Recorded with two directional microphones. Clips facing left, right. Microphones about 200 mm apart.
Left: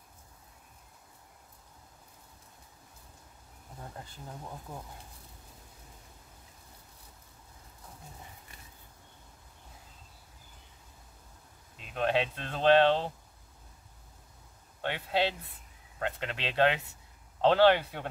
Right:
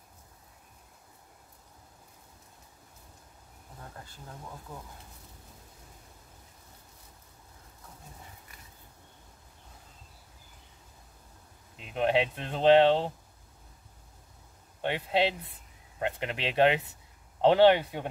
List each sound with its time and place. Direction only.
11.7 s speech: 20° right (ahead or behind)
14.8 s speech: 20° right (ahead or behind)